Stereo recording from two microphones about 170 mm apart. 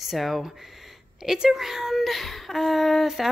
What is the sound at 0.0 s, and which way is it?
Speech, centre (ahead or behind).